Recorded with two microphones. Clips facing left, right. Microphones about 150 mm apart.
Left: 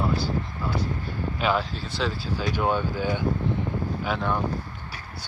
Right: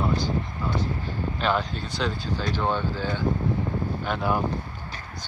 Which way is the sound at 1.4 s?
5° left (ahead or behind).